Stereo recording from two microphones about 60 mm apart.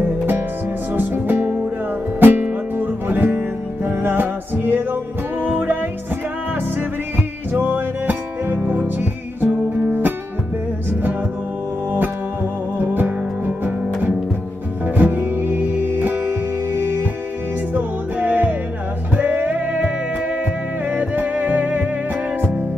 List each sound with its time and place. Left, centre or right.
0.9 s music: right
7.5 s music: right
12.7 s music: right
15.0 s music: right
20.9 s music: right